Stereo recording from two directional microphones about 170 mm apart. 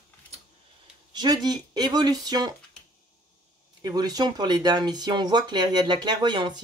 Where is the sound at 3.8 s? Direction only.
20° right (ahead or behind).